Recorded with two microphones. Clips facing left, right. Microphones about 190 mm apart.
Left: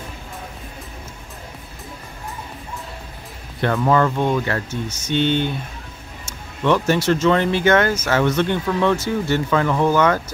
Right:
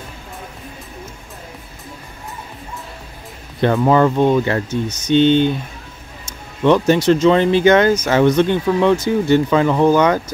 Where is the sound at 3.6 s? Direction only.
20° right (ahead or behind).